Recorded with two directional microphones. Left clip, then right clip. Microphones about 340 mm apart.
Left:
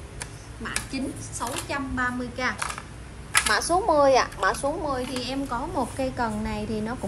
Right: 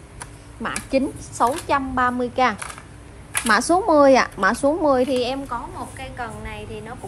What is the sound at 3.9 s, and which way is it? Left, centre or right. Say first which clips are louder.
Speech: right 6 dB; centre.